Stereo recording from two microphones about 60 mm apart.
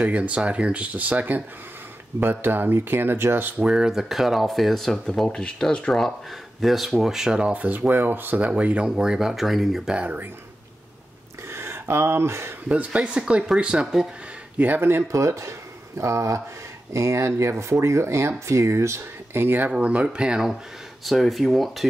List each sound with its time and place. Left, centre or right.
0.0 s speech: right
3.6 s speech: centre
9.9 s speech: right
11.4 s a sound: right
12.6 s speech: right
14.6 s speech: right
15.0 s speech: right
19.7 s speech: centre
21.0 s speech: centre